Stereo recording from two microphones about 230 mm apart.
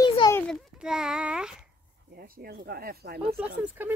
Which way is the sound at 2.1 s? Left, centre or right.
Right.